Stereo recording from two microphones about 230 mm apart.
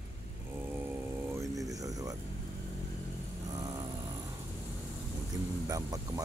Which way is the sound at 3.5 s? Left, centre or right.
Centre.